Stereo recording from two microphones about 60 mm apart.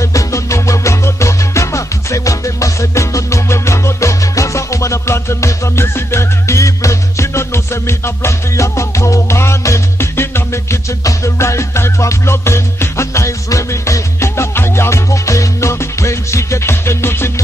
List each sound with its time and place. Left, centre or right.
0.0 s music: left